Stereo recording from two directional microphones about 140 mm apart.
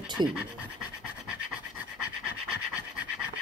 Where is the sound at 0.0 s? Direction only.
30° right (ahead or behind).